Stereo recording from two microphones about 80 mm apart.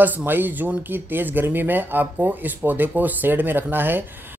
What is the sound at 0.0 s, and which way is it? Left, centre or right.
Speech, right.